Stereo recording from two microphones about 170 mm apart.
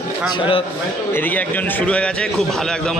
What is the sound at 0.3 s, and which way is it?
Speech, 30° left (ahead or behind).